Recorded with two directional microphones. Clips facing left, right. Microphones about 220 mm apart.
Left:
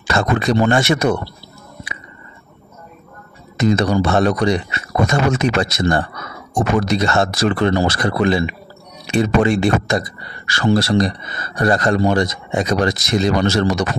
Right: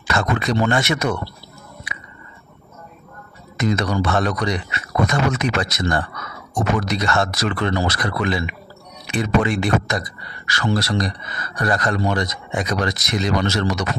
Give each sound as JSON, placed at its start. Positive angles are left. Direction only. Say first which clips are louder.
{"t": 0.0, "sound": "speech", "louder": "left 4 dB", "side_deg": 30}
{"t": 3.5, "sound": "speech", "louder": "left 5 dB", "side_deg": 30}